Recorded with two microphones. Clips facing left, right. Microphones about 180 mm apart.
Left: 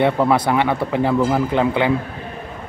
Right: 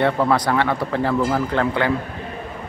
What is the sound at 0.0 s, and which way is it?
A man's voice, 15° left (ahead or behind).